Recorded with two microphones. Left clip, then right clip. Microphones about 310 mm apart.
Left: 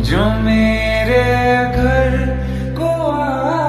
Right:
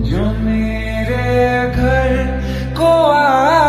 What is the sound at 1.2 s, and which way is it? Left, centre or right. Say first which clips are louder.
Music: left 1 dB; centre.